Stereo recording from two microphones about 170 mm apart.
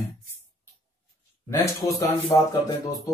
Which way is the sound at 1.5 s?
20° left (ahead or behind).